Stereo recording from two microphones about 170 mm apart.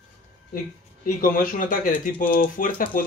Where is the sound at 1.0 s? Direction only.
55° left (ahead or behind).